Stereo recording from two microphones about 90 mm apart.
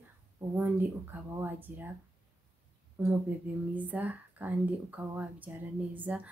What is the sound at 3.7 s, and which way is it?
A woman's voice, 20° right (ahead or behind).